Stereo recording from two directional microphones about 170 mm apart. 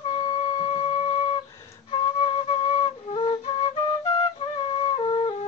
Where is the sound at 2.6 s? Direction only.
35° left (ahead or behind).